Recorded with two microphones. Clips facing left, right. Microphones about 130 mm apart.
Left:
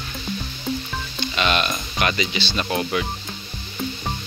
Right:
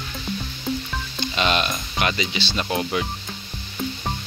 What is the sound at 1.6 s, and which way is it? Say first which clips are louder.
Speech: left 1 dB; 15° right (ahead or behind).